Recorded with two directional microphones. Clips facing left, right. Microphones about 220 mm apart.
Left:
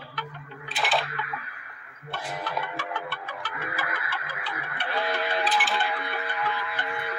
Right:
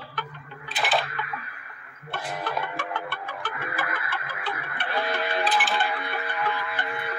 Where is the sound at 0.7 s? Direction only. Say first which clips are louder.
Right 1 dB; centre (ahead or behind).